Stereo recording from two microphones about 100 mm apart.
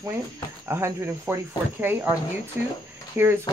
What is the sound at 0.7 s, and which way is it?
Speech, 25° right (ahead or behind).